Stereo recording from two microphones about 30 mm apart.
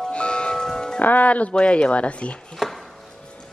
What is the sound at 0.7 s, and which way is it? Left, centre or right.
Music, left.